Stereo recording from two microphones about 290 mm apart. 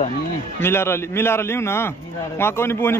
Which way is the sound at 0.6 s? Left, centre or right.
Centre.